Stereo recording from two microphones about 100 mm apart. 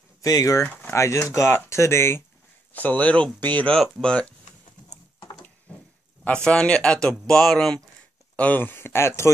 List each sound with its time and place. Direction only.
0.2 s speech: 35° left (ahead or behind); by 4.3 s 10° left (ahead or behind)
6.2 s speech: 10° left (ahead or behind)
8.4 s speech: 15° left (ahead or behind)